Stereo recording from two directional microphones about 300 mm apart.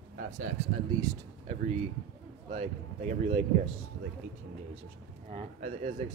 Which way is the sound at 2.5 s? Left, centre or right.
Right.